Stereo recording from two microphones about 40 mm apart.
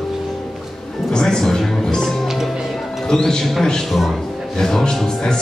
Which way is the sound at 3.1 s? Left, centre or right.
Centre.